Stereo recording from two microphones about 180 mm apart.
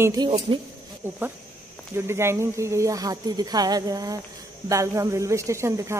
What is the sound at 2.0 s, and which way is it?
Speech, 15° right (ahead or behind).